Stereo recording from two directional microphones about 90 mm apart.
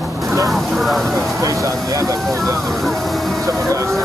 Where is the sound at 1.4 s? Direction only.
35° right (ahead or behind).